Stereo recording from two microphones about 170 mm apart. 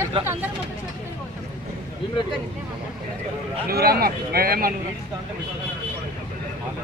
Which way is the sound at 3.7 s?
65° right (ahead or behind).